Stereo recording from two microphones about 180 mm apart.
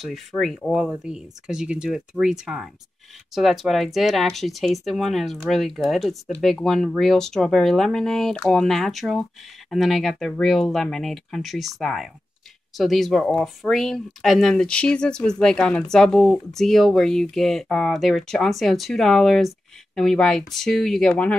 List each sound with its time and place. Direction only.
0.0 s speech: centre (ahead or behind)